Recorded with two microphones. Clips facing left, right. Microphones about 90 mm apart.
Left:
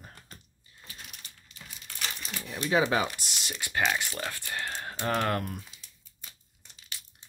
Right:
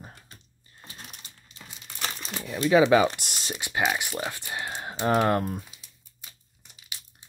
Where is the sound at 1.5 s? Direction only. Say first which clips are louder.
Right 1 dB; 25° right (ahead or behind).